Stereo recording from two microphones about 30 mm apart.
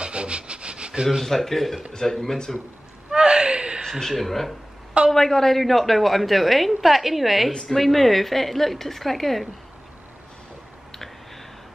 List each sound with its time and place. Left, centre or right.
0.0 s rub: right
1.2 s a woman's voice: centre
3.1 s gasp: right
4.1 s a woman's voice: centre
5.6 s a woman's voice: centre
7.7 s a woman's voice: centre